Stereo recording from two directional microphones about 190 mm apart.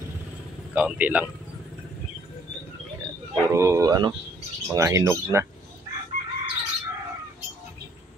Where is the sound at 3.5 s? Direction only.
15° right (ahead or behind).